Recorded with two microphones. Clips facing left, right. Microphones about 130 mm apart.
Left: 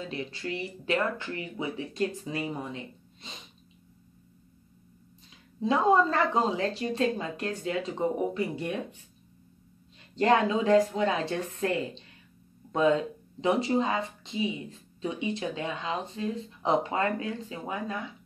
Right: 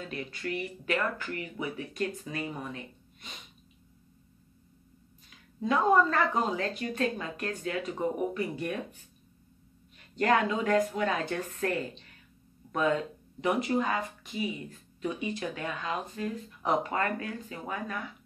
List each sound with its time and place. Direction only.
0.0 s speech: 25° left (ahead or behind)
5.6 s speech: 30° left (ahead or behind)
10.1 s speech: 25° left (ahead or behind)